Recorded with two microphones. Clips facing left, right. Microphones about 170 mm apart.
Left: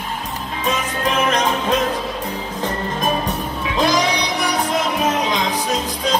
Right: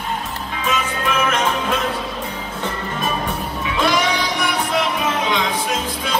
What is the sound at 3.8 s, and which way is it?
Music, 35° left (ahead or behind).